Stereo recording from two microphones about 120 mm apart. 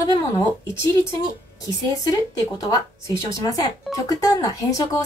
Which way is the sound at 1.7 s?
30° left (ahead or behind).